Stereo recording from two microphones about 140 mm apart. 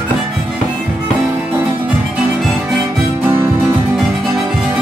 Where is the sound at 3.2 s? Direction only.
15° right (ahead or behind).